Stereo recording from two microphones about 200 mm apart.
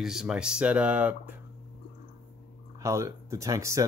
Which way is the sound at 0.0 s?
Centre (ahead or behind).